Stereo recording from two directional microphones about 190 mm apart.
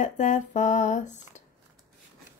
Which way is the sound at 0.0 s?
40° left (ahead or behind).